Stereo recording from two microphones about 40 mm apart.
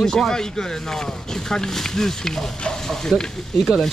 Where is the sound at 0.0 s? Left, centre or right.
Centre.